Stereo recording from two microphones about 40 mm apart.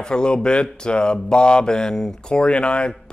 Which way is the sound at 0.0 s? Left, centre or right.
Left.